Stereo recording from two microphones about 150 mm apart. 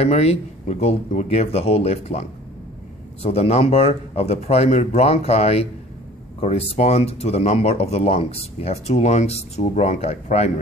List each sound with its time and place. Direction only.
0.0 s speech: 45° left (ahead or behind)